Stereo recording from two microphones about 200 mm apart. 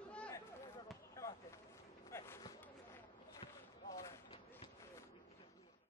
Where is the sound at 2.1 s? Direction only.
15° left (ahead or behind).